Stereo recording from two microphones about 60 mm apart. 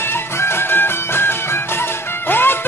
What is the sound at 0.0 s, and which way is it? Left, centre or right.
Music, left.